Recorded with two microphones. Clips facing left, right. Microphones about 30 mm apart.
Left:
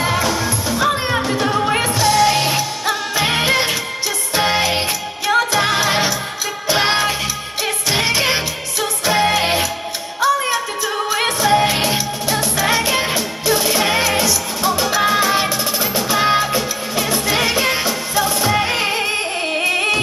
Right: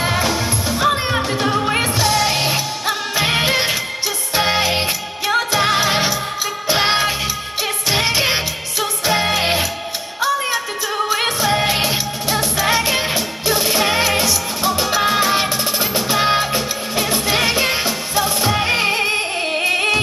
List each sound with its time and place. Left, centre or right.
0.0 s music: centre